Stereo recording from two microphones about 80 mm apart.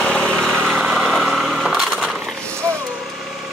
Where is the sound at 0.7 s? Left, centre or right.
Centre.